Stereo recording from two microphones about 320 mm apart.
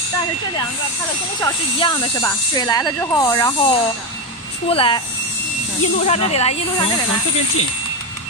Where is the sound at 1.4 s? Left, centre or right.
Centre.